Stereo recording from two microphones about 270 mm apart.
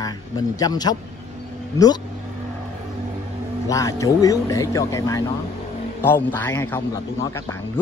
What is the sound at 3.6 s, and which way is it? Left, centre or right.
A man's voice, centre.